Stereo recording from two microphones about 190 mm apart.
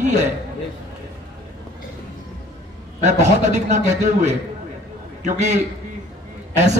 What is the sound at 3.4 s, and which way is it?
A man's voice, 40° right (ahead or behind).